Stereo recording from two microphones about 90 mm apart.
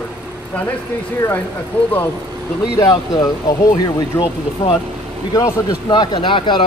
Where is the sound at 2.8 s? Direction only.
50° left (ahead or behind).